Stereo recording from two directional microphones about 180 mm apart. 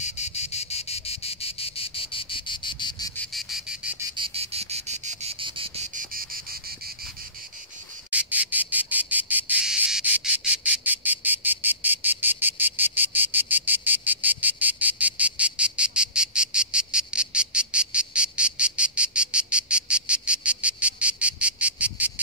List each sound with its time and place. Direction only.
0.0 s insect: 40° left (ahead or behind)
3.3 s frog: centre (ahead or behind)
4.2 s insect: 35° right (ahead or behind)
8.1 s insect: 10° right (ahead or behind)